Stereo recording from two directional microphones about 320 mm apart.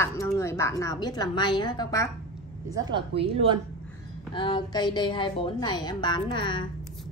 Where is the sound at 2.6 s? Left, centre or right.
Centre.